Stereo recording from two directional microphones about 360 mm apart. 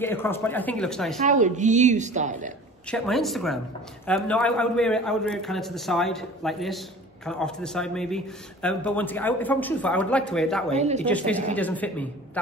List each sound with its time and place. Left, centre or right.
0.0 s a man's voice: centre
1.2 s a woman's voice: centre
2.9 s a man's voice: centre
10.8 s a woman's voice: centre
11.1 s a man's voice: centre